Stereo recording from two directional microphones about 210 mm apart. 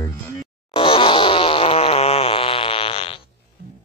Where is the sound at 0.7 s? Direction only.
25° left (ahead or behind).